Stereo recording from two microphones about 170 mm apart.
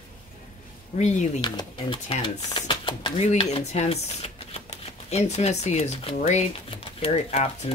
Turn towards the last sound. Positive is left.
turn(degrees=35)  # may be behind; listen again after turning